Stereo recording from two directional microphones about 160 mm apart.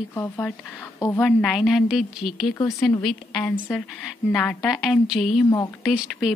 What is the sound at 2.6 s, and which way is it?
A woman's voice, 20° left (ahead or behind).